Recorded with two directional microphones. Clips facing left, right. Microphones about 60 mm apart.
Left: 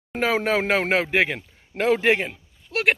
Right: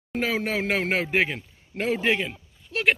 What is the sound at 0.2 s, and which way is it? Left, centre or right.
Speech, left.